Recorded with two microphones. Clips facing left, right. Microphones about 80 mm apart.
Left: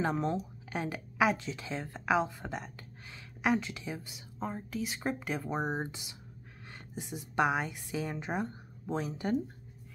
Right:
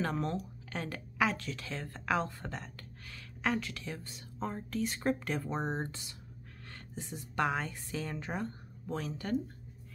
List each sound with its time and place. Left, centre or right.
0.0 s a woman's voice: centre